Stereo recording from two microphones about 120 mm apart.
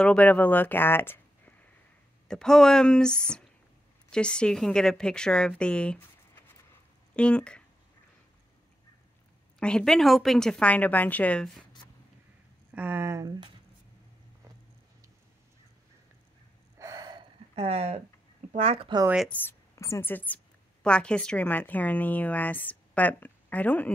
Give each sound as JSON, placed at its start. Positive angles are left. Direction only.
{"t": 0.0, "sound": "a woman's voice", "side_deg": 10}
{"t": 2.2, "sound": "a woman's voice", "side_deg": 5}
{"t": 7.2, "sound": "a woman's voice", "side_deg": 10}
{"t": 9.6, "sound": "a woman's voice", "side_deg": 5}
{"t": 12.7, "sound": "speech", "side_deg": -15}
{"t": 16.7, "sound": "a sound", "side_deg": -30}
{"t": 17.6, "sound": "speech", "side_deg": -55}
{"t": 19.2, "sound": "a woman's voice", "side_deg": 15}
{"t": 19.7, "sound": "a woman's voice", "side_deg": 25}